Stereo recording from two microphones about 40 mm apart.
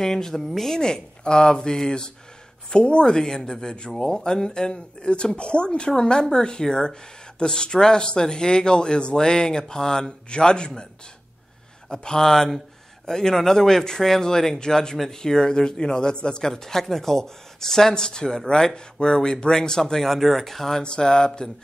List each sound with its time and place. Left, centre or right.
0.0 s speech: centre
0.4 s a woman's voice: centre
0.7 s speech: centre
11.9 s a man's voice: centre
20.8 s speech: left